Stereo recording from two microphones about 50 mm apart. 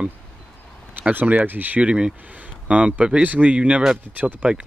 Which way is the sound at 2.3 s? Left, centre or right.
Right.